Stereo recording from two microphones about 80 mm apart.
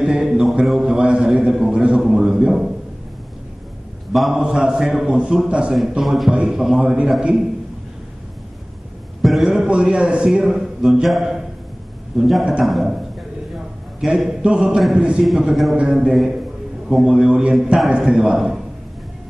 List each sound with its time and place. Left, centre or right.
0.0 s a sound: centre
4.1 s a man's voice: centre
9.2 s a man's voice: centre
14.0 s a man's voice: centre